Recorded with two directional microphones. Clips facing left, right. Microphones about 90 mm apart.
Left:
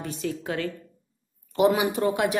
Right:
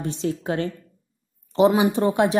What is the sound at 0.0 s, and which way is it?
A woman's voice, 25° right (ahead or behind).